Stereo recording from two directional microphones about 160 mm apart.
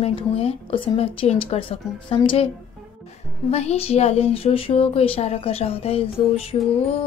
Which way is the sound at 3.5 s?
40° left (ahead or behind).